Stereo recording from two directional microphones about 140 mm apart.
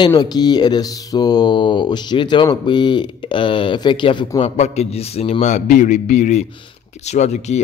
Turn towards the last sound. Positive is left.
turn(degrees=55)  # may be behind; listen again after turning